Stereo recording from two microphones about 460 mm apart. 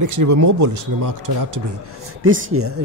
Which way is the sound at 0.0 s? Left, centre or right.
Right.